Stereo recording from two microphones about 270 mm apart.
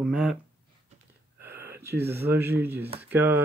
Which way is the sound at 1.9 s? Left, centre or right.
Right.